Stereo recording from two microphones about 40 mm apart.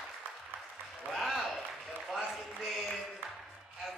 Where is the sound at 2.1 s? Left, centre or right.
Centre.